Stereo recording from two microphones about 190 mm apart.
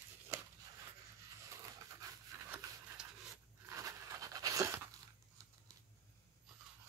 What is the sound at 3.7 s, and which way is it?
Crunch, 15° right (ahead or behind).